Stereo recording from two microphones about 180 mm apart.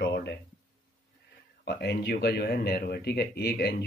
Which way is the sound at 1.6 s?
65° left (ahead or behind).